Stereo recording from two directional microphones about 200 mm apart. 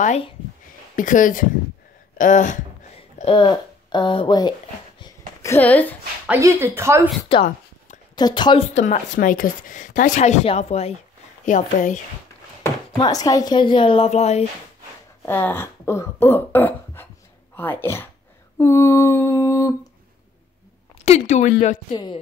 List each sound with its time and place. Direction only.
0.0 s a woman's voice: 35° left (ahead or behind)
3.2 s speech: 25° left (ahead or behind)
5.4 s speech: 10° left (ahead or behind)
6.2 s speech: 10° right (ahead or behind)
7.2 s a woman's voice: 25° left (ahead or behind)
8.7 s a woman's voice: 35° left (ahead or behind)
12.9 s a woman's voice: 20° left (ahead or behind)
15.2 s speech: 10° left (ahead or behind)
17.6 s a sound: 10° left (ahead or behind)
21.0 s a woman's voice: 35° left (ahead or behind)
21.9 s a woman's voice: 20° left (ahead or behind)